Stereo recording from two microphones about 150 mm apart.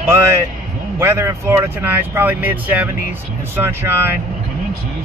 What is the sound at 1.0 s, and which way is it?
Speech, 15° right (ahead or behind).